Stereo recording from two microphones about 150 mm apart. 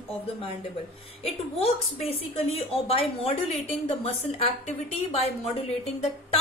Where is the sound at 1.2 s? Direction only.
40° left (ahead or behind).